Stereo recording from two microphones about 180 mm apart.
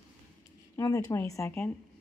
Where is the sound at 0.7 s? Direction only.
15° left (ahead or behind).